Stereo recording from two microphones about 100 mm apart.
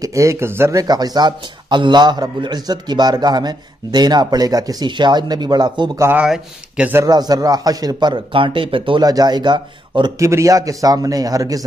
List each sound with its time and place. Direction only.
0.0 s speech: 30° right (ahead or behind)
0.7 s a man's voice: 40° right (ahead or behind)
6.1 s speech: 10° right (ahead or behind)
7.1 s a man's voice: 40° right (ahead or behind); by 9.0 s 60° right (ahead or behind)
9.0 s a man's voice: 40° right (ahead or behind)
10.1 s speech: 30° right (ahead or behind)